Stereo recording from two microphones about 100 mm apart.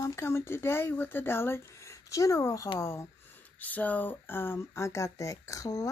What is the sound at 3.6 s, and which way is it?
Speech, 15° left (ahead or behind).